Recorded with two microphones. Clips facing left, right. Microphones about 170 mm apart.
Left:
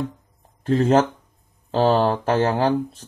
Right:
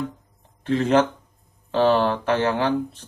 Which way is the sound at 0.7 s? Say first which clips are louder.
Left 2 dB; 40° left (ahead or behind).